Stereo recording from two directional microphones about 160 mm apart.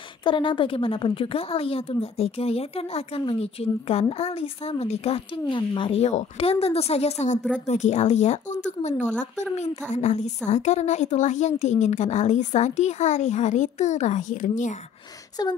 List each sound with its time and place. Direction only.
0.2 s a woman's voice: 30° left (ahead or behind); by 14.7 s 55° left (ahead or behind)